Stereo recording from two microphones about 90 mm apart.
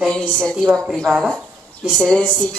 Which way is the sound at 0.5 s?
5° right (ahead or behind).